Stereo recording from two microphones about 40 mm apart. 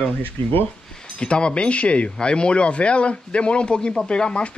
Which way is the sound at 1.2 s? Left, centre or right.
Left.